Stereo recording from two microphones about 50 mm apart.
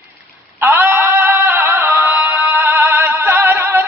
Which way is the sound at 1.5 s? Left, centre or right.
Right.